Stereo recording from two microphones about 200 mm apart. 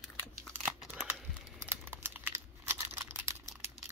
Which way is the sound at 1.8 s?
10° right (ahead or behind).